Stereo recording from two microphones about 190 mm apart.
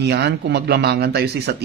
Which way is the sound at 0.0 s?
60° right (ahead or behind).